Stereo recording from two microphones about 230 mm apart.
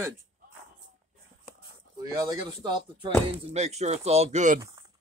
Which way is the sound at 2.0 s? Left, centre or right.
Centre.